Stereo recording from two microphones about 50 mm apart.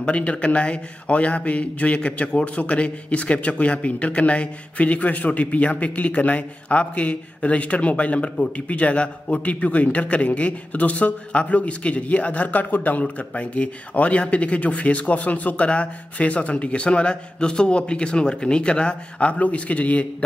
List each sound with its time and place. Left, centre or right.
0.0 s a man's voice: left